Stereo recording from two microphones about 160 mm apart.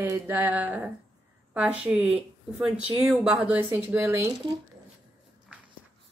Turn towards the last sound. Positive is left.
turn(degrees=-15)  # may be behind; listen again after turning